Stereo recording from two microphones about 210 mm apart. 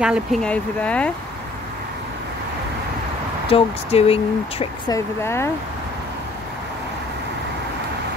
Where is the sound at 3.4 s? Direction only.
25° left (ahead or behind).